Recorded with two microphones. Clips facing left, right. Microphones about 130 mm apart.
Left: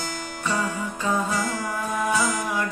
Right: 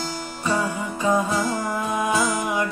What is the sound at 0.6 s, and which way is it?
Music, 15° right (ahead or behind).